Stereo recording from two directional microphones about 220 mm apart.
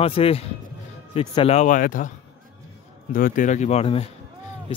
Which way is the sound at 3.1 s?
40° left (ahead or behind).